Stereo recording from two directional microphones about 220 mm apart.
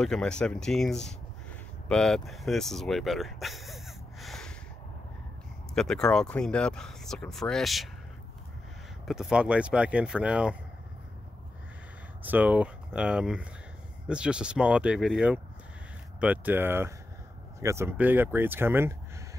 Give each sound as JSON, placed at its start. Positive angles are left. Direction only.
{"t": 0.0, "sound": "speech", "side_deg": 5}
{"t": 5.8, "sound": "speech", "side_deg": 5}
{"t": 9.0, "sound": "speech", "side_deg": 0}
{"t": 12.2, "sound": "speech", "side_deg": -5}